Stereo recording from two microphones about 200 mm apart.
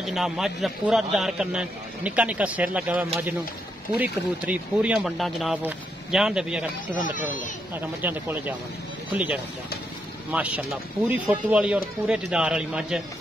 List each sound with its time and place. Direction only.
0.0 s a man's voice: centre (ahead or behind)
7.2 s speech: 40° left (ahead or behind)
7.7 s a man's voice: 10° right (ahead or behind)